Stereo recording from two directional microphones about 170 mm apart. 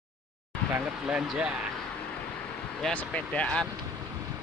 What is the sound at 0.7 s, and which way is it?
Speech, 5° right (ahead or behind).